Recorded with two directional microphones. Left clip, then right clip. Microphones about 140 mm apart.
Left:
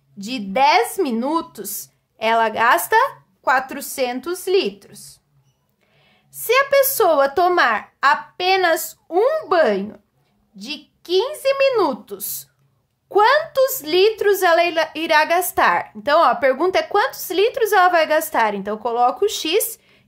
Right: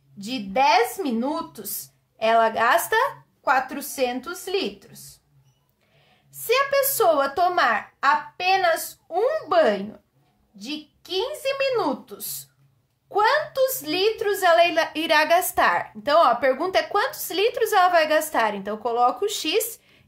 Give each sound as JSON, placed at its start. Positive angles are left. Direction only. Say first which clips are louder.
{"t": 0.2, "sound": "speech", "louder": "left 4 dB", "side_deg": 45}
{"t": 10.5, "sound": "speech", "louder": "left 2 dB", "side_deg": 55}
{"t": 14.7, "sound": "a woman's voice", "louder": "left 3 dB", "side_deg": 25}